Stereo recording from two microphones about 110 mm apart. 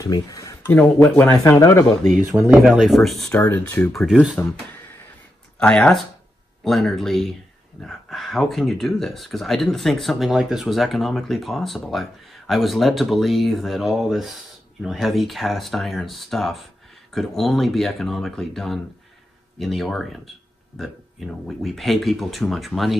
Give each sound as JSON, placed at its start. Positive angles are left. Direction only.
{"t": 0.0, "sound": "a sound", "side_deg": 35}
{"t": 0.7, "sound": "speech", "side_deg": 15}
{"t": 1.6, "sound": "speech", "side_deg": 25}
{"t": 2.3, "sound": "speech", "side_deg": -15}
{"t": 2.7, "sound": "speech", "side_deg": 0}
{"t": 3.3, "sound": "speech", "side_deg": 20}
{"t": 3.9, "sound": "speech", "side_deg": 0}
{"t": 5.6, "sound": "speech", "side_deg": 10}
{"t": 21.5, "sound": "speech", "side_deg": 0}